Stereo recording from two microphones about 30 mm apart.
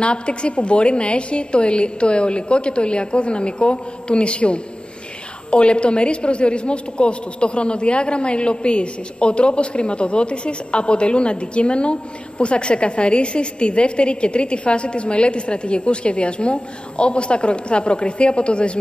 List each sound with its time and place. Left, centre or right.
0.0 s a woman's voice: left